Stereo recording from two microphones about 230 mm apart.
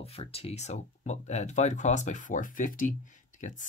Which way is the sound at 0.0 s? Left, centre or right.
Left.